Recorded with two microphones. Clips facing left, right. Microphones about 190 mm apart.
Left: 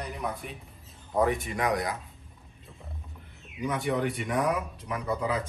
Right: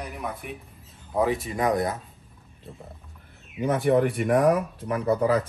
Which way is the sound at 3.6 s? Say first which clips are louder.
Right 7 dB; 55° right (ahead or behind).